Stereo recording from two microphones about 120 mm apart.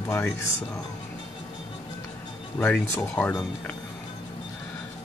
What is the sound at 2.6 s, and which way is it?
Speech, 10° left (ahead or behind).